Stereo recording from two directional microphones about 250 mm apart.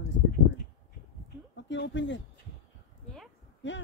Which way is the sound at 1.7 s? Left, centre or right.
Left.